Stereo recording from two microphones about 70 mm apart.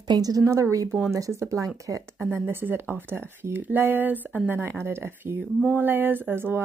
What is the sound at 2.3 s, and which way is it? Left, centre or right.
Speech, right.